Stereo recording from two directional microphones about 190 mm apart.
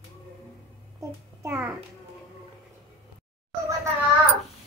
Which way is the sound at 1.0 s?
15° right (ahead or behind).